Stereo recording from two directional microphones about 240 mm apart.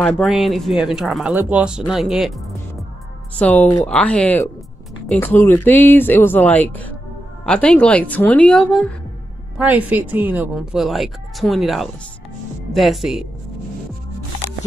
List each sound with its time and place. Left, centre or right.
0.0 s speech: centre